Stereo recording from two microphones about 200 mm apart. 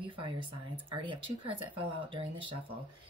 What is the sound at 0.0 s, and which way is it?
Speech, 25° right (ahead or behind).